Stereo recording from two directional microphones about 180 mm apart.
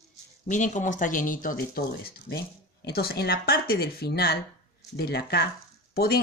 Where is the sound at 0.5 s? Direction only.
45° left (ahead or behind).